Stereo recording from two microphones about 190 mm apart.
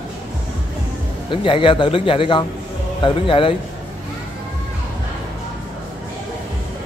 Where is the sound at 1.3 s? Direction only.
25° left (ahead or behind).